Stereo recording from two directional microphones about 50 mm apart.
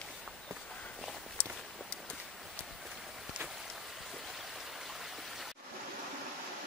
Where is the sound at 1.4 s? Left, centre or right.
Left.